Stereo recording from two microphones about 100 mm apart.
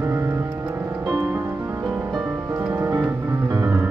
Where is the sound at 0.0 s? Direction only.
25° right (ahead or behind).